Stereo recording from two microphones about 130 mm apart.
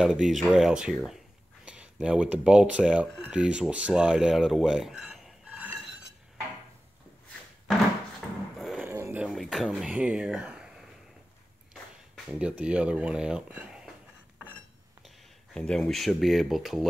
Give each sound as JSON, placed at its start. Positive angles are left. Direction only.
{"t": 0.0, "sound": "speech", "side_deg": -5}
{"t": 8.5, "sound": "a sound", "side_deg": 0}
{"t": 8.8, "sound": "a sound", "side_deg": -20}
{"t": 9.2, "sound": "speech", "side_deg": 0}
{"t": 12.3, "sound": "speech", "side_deg": -10}
{"t": 15.0, "sound": "speech", "side_deg": 5}